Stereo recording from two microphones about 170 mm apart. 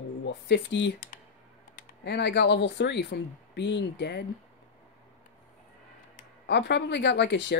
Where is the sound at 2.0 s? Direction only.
80° left.